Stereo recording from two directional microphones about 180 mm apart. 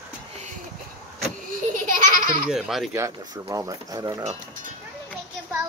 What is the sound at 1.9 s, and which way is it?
Baby laughter, 50° right (ahead or behind).